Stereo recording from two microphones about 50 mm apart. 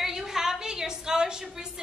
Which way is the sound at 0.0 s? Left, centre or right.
Centre.